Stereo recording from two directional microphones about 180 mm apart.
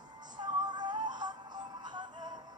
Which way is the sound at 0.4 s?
25° right (ahead or behind).